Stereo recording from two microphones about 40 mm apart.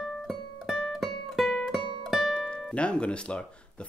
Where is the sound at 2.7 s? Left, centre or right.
Left.